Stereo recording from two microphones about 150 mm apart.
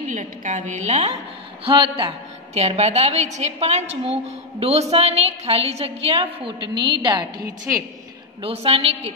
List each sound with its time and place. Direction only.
0.0 s a woman's voice: 55° right (ahead or behind)
1.6 s a woman's voice: 35° right (ahead or behind)
7.7 s a woman's voice: 15° right (ahead or behind)
8.4 s a woman's voice: 40° right (ahead or behind)